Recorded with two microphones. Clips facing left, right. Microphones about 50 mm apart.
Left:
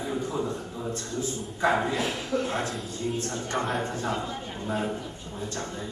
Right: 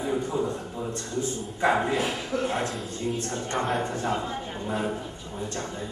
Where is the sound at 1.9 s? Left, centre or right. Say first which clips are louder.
Right 1 dB; centre.